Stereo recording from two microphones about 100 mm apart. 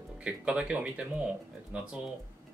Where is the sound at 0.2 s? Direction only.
10° right (ahead or behind).